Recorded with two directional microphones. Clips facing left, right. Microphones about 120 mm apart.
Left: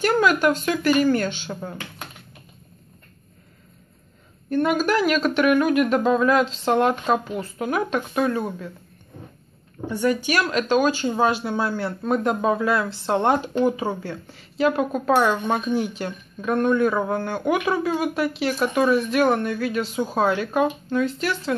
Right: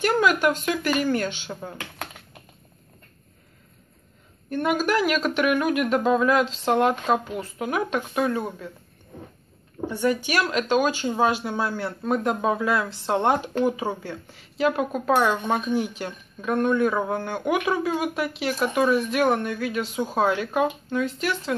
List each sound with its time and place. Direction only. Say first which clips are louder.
0.0 s speech: left 2 dB; 10° right (ahead or behind)
4.5 s speech: left 3 dB; 10° right (ahead or behind)
10.0 s speech: left 2 dB; 20° right (ahead or behind); by 17.2 s 5° left (ahead or behind)
17.2 s speech: left 2 dB; 10° right (ahead or behind)